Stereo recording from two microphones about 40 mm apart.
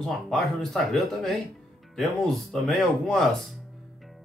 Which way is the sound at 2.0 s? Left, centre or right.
Centre.